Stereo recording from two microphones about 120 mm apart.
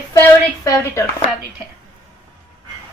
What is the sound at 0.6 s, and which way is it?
Speech, 25° left (ahead or behind).